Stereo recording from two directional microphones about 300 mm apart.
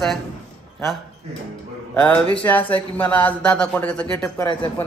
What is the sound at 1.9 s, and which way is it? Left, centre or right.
A man's voice, centre.